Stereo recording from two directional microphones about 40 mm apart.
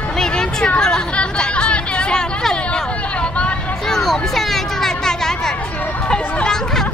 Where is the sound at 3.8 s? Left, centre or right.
Centre.